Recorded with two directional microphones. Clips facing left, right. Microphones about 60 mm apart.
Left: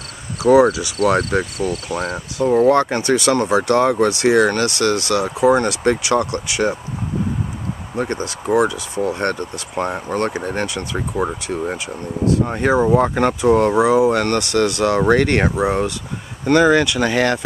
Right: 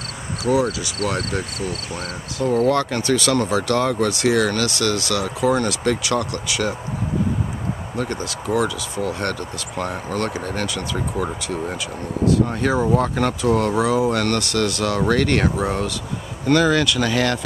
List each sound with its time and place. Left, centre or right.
0.6 s speech: left
7.9 s speech: left
11.2 s speech: centre
13.7 s speech: centre
14.2 s speech: left
15.5 s speech: centre